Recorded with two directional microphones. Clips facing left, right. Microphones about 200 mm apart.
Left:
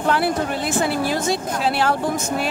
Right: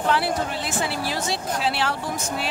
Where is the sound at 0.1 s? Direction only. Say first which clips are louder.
Left 5 dB; 50° left (ahead or behind).